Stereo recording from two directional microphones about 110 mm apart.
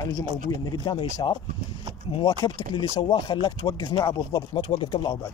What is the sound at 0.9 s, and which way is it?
Speech, 45° left (ahead or behind).